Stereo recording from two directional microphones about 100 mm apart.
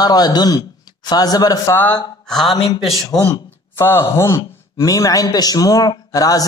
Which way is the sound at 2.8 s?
Centre (ahead or behind).